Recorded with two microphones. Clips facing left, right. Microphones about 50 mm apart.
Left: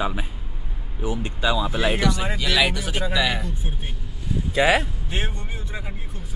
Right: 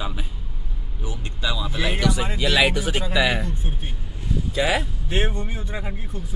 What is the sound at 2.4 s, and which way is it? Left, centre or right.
A man's voice, centre.